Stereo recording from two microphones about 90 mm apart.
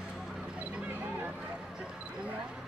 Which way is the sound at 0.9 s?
20° right (ahead or behind).